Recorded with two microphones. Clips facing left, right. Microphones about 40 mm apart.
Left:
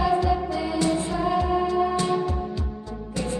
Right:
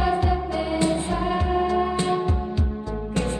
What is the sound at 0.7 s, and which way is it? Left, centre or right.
Music, right.